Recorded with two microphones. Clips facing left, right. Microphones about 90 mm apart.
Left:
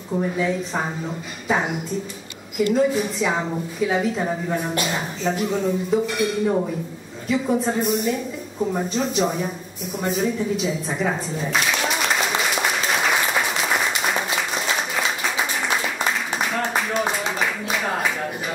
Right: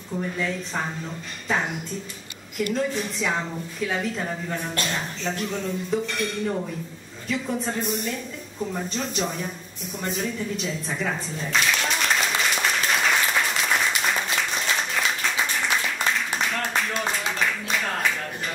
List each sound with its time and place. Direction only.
0.1 s a woman's voice: 15° left (ahead or behind)
8.5 s a woman's voice: 15° left (ahead or behind)
8.8 s a woman's voice: 5° left (ahead or behind)
9.9 s a sound: 5° left (ahead or behind)